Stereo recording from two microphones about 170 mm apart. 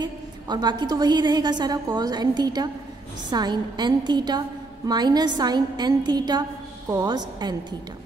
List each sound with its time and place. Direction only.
0.0 s a woman's voice: 25° right (ahead or behind)